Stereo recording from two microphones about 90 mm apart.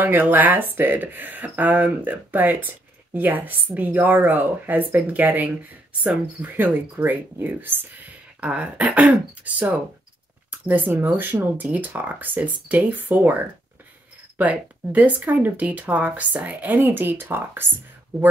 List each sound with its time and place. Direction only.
0.0 s speech: 20° right (ahead or behind)
14.4 s speech: 15° right (ahead or behind)